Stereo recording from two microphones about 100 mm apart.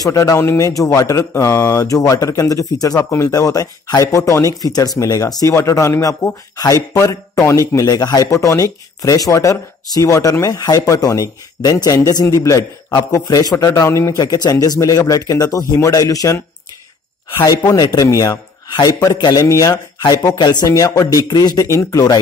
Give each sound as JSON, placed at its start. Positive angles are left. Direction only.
{"t": 0.0, "sound": "speech", "side_deg": 35}
{"t": 17.5, "sound": "speech", "side_deg": 40}
{"t": 21.6, "sound": "speech", "side_deg": 30}